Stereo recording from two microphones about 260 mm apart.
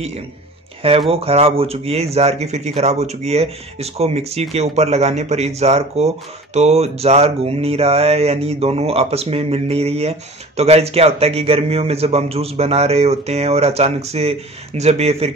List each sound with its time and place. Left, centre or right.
1.1 s speech: right